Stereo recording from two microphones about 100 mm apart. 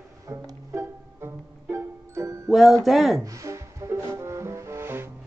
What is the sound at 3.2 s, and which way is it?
Music, 30° right (ahead or behind).